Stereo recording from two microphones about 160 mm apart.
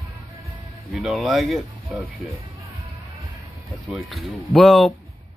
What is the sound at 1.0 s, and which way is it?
Speech, centre (ahead or behind).